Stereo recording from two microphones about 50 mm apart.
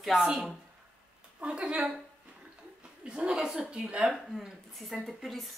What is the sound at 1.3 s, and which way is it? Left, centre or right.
Speech, right.